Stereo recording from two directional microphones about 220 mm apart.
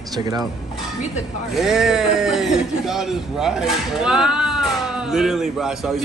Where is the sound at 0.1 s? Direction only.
15° right (ahead or behind).